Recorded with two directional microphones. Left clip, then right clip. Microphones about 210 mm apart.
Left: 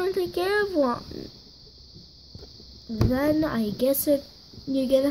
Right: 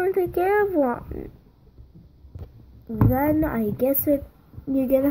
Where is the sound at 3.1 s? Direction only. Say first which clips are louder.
Right 1 dB; 20° left (ahead or behind).